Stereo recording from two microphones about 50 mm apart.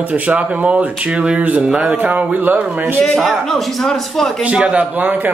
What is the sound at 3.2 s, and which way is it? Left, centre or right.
A man's voice, centre.